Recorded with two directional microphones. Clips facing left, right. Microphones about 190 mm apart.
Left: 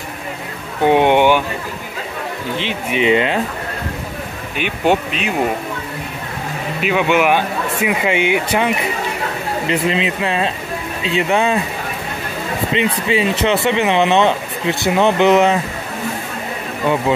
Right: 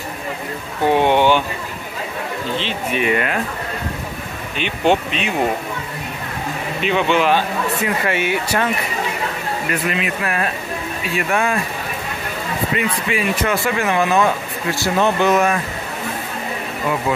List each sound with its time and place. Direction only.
0.8 s speech: 15° left (ahead or behind)
2.5 s speech: 15° left (ahead or behind)
4.6 s speech: 10° left (ahead or behind)
6.8 s speech: 10° left (ahead or behind)
12.7 s speech: 25° left (ahead or behind)